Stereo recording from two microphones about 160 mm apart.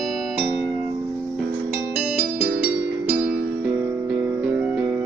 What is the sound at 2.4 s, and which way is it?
Music, 10° right (ahead or behind).